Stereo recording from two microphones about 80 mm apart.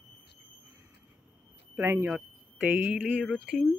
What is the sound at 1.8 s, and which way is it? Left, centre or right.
Speech, right.